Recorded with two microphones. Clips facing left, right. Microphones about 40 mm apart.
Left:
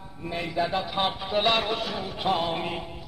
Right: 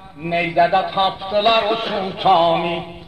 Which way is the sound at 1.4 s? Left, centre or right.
Right.